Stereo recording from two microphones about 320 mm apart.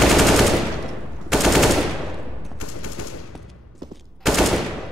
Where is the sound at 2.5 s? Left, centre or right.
Left.